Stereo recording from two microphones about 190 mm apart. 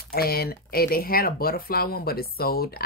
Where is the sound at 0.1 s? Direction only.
55° left (ahead or behind).